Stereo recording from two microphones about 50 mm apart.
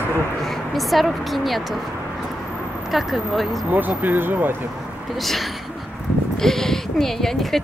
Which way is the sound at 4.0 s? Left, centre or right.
Right.